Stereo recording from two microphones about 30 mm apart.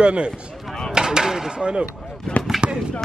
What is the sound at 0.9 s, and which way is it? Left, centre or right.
Speech, centre.